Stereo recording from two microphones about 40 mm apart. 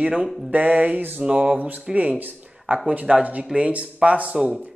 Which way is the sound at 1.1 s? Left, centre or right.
Right.